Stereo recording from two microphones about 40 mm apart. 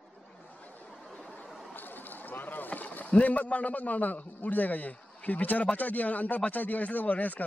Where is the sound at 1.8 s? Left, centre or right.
Left.